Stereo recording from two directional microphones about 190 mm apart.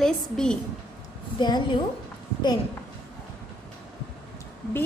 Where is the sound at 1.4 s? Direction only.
25° left (ahead or behind).